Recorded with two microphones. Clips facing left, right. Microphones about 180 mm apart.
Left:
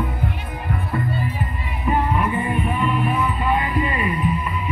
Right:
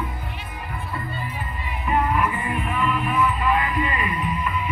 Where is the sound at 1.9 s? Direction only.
35° left (ahead or behind).